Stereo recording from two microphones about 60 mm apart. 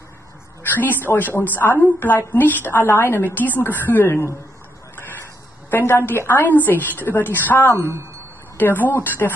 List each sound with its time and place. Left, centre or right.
0.7 s a woman's voice: left
5.7 s a woman's voice: left
7.7 s a woman's voice: right
8.5 s a woman's voice: left